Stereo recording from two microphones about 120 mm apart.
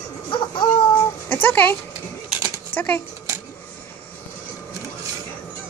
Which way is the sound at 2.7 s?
15° left (ahead or behind).